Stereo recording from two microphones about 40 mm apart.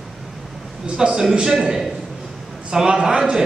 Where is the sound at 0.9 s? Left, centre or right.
Centre.